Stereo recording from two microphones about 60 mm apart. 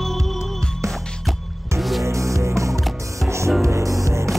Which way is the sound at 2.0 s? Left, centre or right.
Right.